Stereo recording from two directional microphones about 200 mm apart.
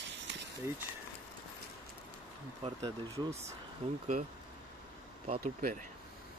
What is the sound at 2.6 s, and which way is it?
Speech, 20° right (ahead or behind).